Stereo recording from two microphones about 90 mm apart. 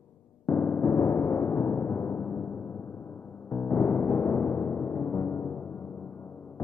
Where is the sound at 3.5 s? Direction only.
25° left (ahead or behind).